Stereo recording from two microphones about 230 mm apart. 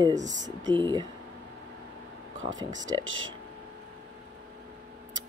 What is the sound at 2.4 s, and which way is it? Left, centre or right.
Speech, centre.